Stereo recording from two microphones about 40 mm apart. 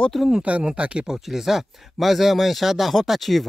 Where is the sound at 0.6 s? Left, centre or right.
Right.